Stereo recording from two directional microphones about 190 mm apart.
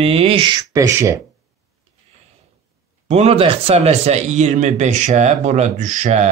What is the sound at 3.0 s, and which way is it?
Speech, 35° right (ahead or behind).